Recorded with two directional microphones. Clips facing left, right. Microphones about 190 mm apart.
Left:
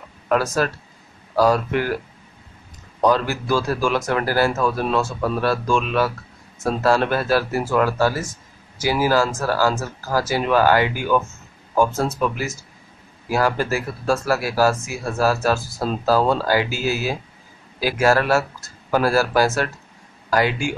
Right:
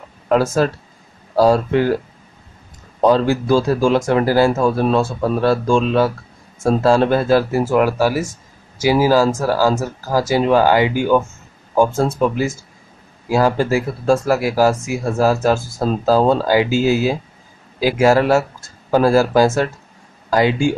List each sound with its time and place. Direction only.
1.3 s speech: 25° right (ahead or behind)
3.0 s speech: 25° right (ahead or behind)